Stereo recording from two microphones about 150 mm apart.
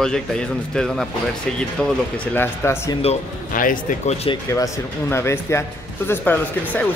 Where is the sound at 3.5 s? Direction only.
65° left (ahead or behind).